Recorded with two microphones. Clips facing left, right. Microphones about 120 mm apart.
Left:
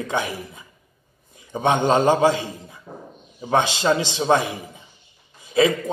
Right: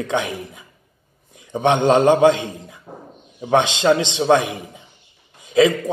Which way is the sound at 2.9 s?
15° right (ahead or behind).